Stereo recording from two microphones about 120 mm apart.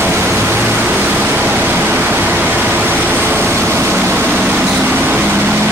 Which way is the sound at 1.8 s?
15° right (ahead or behind).